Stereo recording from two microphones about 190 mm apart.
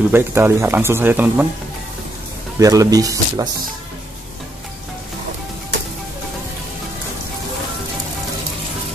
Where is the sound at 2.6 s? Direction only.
20° right (ahead or behind).